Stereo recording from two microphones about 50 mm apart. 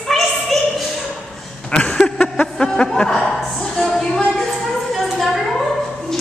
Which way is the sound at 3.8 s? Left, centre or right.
Centre.